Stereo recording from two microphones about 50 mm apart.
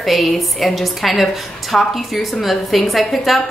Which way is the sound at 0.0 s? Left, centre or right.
Centre.